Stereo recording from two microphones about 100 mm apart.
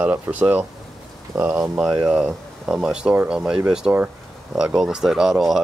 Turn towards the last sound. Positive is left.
turn(degrees=-5)  # may be behind; listen again after turning